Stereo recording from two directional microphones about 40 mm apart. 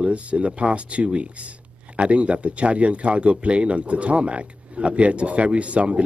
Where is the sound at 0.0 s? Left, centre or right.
Right.